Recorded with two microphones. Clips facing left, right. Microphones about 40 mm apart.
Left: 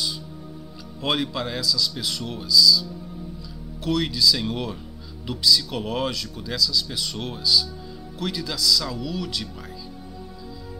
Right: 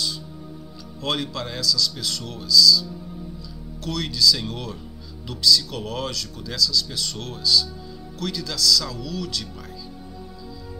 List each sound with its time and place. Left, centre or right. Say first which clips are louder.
1.0 s speech: left 2 dB; centre